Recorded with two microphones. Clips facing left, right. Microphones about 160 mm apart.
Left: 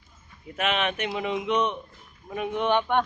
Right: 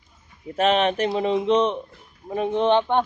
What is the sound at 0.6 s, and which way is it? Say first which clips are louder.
Speech: right 7 dB; 35° right (ahead or behind).